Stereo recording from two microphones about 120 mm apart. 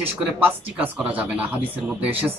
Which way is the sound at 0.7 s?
10° right (ahead or behind).